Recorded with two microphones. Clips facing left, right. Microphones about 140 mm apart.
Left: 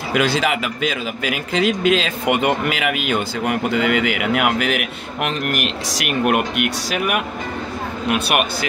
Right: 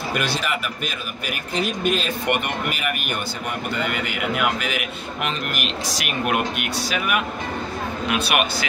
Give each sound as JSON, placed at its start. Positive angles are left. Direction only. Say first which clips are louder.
{"t": 0.1, "sound": "a man's voice", "louder": "left 8 dB", "side_deg": 90}
{"t": 8.1, "sound": "speech", "louder": "left 3 dB", "side_deg": 50}